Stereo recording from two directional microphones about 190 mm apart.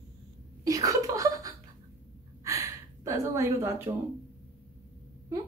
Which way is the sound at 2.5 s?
15° right (ahead or behind).